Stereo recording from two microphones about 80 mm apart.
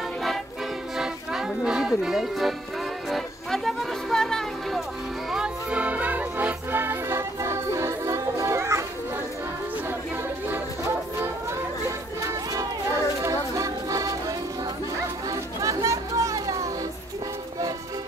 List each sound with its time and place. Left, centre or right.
0.9 s music: centre
5.3 s music: centre; by 8.8 s right
13.2 s music: right
15.2 s chatter: right